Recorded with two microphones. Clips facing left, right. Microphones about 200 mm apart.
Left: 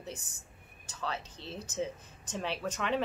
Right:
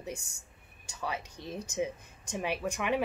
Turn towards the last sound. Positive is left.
turn(degrees=-10)  # may be behind; listen again after turning